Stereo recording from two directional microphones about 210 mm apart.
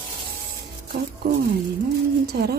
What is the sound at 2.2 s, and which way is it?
Speech, 50° right (ahead or behind).